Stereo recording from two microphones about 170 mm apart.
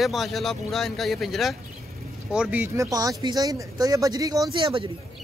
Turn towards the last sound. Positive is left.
turn(degrees=-30)  # may be behind; listen again after turning